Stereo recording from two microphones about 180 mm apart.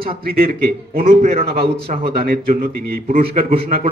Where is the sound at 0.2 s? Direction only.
55° right (ahead or behind).